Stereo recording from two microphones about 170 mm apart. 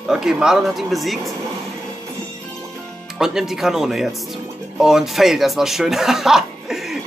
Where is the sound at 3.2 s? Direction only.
5° right (ahead or behind).